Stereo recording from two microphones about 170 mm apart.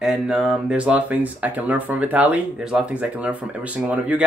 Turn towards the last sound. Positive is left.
turn(degrees=-10)  # may be behind; listen again after turning